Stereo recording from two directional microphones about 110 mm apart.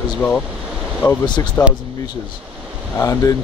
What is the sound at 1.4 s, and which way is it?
Speech, 30° left (ahead or behind).